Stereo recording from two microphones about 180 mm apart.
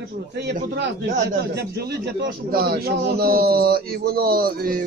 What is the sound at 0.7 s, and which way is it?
A man's voice, 70° right (ahead or behind).